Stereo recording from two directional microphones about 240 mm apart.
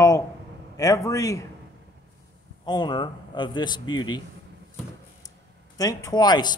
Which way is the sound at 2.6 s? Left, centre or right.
Centre.